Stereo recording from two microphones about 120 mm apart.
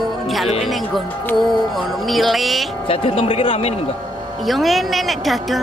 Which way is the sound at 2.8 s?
50° left (ahead or behind).